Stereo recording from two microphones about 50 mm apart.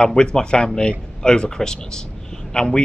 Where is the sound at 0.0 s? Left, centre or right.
Centre.